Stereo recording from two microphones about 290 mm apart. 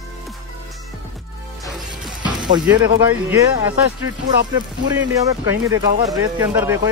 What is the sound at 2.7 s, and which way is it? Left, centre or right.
Speech, centre.